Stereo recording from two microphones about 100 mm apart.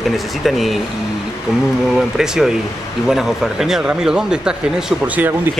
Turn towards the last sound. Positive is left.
turn(degrees=-20)  # may be behind; listen again after turning